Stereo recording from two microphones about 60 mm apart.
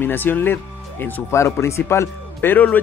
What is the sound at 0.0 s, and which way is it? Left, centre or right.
Speech, left.